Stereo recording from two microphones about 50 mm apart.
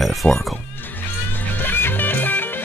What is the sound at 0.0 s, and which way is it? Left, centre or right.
Speech, centre.